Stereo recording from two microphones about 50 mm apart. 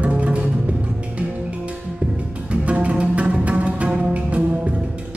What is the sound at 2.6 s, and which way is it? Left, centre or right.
Music, right.